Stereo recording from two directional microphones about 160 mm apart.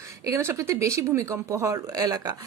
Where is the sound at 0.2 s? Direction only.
15° right (ahead or behind).